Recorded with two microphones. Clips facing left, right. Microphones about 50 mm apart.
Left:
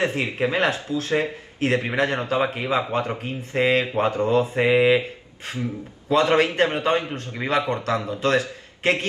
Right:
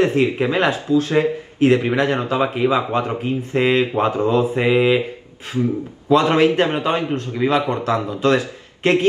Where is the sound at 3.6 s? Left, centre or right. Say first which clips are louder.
Right 3 dB; centre.